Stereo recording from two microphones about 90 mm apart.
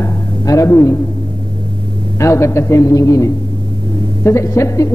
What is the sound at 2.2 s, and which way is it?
A woman's voice, 35° left (ahead or behind).